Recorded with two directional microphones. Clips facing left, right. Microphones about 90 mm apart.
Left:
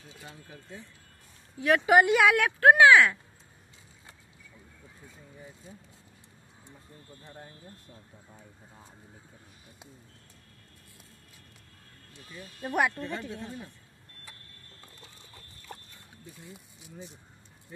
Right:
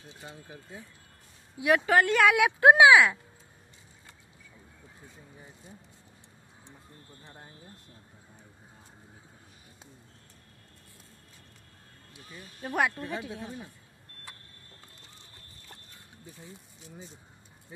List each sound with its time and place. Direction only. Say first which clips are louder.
1.6 s speech: even; 5° right (ahead or behind)
1.9 s a woman's voice: left 4 dB; 15° left (ahead or behind)
2.2 s speech: right 1 dB; 5° right (ahead or behind)
2.6 s speech: even; 15° right (ahead or behind)
7.2 s speech: left 4 dB; 25° right (ahead or behind)
12.1 s speech: left 2 dB; 5° right (ahead or behind)